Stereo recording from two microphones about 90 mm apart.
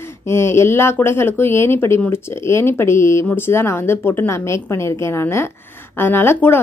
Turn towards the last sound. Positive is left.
turn(degrees=25)  # may be behind; listen again after turning